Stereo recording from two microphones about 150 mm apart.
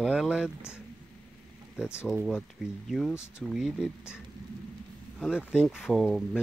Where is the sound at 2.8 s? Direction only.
Centre (ahead or behind).